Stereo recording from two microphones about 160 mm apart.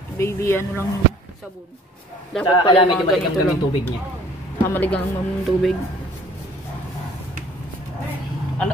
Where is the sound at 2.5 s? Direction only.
35° left (ahead or behind).